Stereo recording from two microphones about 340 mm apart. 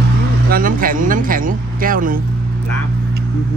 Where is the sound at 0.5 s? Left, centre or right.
Right.